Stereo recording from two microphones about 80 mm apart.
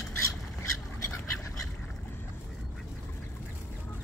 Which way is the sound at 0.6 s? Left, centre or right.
Left.